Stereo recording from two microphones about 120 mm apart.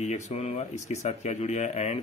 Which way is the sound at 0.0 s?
75° left (ahead or behind).